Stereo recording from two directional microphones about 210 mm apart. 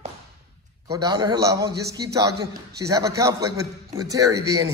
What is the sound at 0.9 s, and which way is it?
A man's voice, 15° right (ahead or behind).